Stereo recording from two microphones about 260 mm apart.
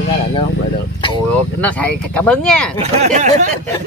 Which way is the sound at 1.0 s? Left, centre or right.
Centre.